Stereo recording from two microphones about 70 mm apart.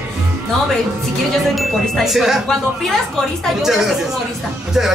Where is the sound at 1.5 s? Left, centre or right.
Centre.